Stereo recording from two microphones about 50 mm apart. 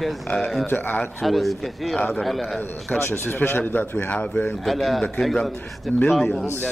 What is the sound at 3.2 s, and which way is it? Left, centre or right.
Speech, left.